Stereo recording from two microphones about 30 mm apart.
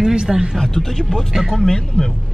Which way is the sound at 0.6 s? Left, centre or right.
Centre.